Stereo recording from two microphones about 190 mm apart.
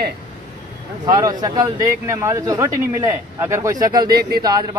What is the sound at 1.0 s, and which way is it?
A man's voice, 20° right (ahead or behind).